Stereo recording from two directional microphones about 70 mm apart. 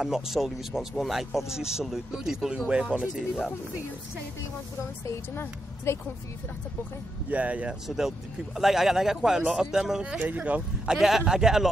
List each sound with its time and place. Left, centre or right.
0.0 s speech: centre
5.0 s speech: left
7.2 s speech: right
8.5 s speech: centre
10.1 s speech: right
10.9 s speech: centre